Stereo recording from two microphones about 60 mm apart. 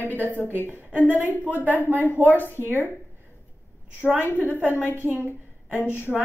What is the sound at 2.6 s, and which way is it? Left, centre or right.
Speech, right.